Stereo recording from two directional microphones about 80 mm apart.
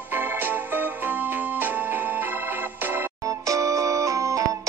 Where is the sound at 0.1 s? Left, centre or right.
Right.